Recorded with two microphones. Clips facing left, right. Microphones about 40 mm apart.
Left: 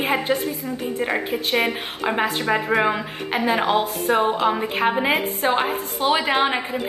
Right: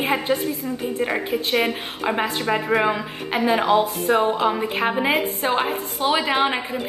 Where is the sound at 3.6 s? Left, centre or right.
Centre.